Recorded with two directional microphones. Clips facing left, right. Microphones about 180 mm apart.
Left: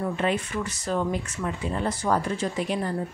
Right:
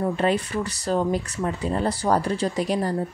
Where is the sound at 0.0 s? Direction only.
35° right (ahead or behind).